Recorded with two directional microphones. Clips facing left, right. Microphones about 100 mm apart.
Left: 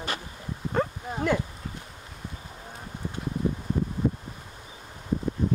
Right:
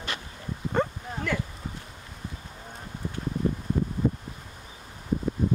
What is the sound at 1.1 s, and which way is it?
Speech, 25° left (ahead or behind).